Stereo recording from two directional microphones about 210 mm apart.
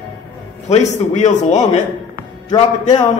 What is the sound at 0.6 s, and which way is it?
Speech, 30° left (ahead or behind).